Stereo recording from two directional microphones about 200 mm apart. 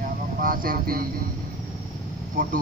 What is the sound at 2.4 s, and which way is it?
Speech, 40° right (ahead or behind).